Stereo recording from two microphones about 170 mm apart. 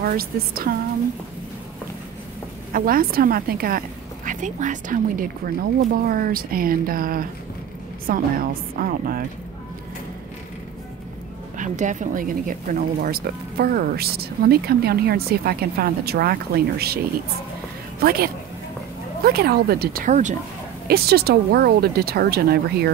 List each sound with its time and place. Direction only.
0.0 s speech: 60° right (ahead or behind)
2.7 s speech: 55° right (ahead or behind)
4.3 s speech: 45° right (ahead or behind)
11.5 s a woman's voice: 50° right (ahead or behind)
20.8 s speech: 65° right (ahead or behind)